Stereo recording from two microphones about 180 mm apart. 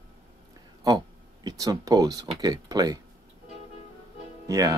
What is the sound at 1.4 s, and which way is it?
Speech, 20° right (ahead or behind).